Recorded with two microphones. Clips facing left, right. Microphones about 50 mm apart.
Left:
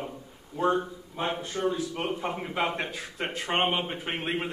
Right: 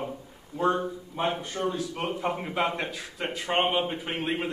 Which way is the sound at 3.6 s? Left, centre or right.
Centre.